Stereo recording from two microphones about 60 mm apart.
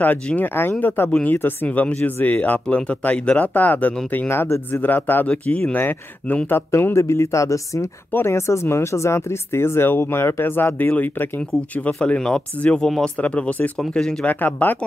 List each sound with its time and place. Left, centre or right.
0.4 s speech: left
4.3 s speech: left
4.8 s speech: left
5.8 s speech: left
8.3 s speech: left
11.8 s speech: centre
13.2 s speech: left
14.2 s speech: left